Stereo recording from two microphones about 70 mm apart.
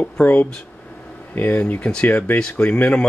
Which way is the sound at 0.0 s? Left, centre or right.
Left.